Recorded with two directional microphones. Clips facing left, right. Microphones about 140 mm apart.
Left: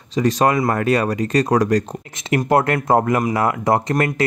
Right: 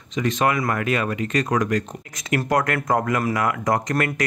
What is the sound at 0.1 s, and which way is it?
Speech, 35° left (ahead or behind).